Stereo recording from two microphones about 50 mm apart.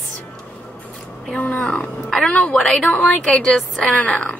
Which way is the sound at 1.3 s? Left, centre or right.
Left.